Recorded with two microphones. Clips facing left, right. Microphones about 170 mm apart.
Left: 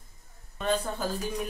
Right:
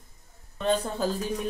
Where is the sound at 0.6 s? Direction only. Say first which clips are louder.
Right 3 dB; 30° right (ahead or behind).